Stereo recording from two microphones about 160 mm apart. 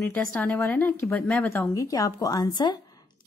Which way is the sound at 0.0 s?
10° left (ahead or behind).